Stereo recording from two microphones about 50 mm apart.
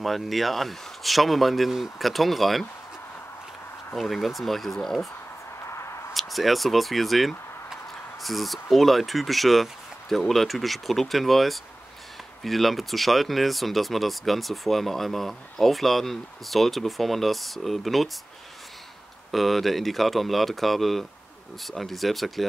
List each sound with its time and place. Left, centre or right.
0.0 s speech: centre
3.9 s speech: centre
5.6 s a sound: left
6.1 s speech: centre
19.3 s speech: centre